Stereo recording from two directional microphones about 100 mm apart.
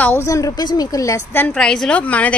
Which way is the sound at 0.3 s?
40° left (ahead or behind).